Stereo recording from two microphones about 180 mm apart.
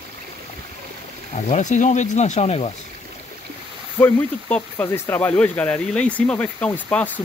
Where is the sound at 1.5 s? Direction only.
45° left (ahead or behind).